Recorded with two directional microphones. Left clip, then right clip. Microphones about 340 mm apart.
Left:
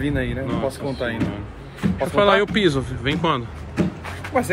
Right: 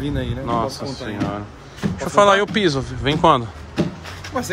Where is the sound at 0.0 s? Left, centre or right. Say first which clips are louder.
Left 2 dB; centre.